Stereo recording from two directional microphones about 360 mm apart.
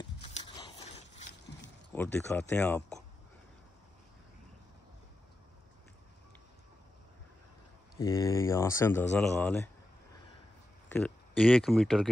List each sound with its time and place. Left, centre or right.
0.3 s biting: centre
1.9 s speech: centre
8.0 s speech: centre
10.9 s speech: centre